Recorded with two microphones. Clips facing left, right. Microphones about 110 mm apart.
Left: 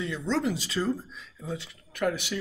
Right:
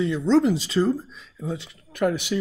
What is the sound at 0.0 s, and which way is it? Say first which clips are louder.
Speech: right 9 dB; 25° right (ahead or behind).